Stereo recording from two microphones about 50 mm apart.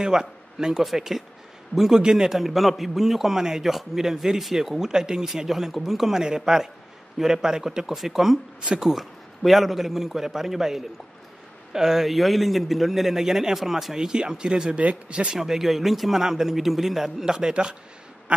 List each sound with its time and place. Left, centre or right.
0.0 s a man's voice: centre
15.3 s a man's voice: centre